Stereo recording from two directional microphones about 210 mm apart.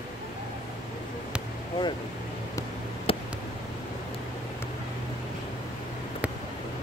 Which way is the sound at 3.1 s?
25° left (ahead or behind).